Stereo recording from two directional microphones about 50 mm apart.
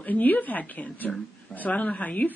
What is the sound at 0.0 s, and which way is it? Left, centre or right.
Speech, left.